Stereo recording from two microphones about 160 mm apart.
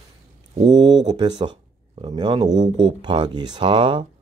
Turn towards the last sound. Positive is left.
turn(degrees=-30)  # may be behind; listen again after turning